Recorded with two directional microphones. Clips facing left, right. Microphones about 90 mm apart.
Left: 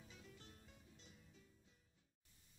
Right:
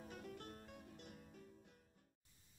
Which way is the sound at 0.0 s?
55° right (ahead or behind).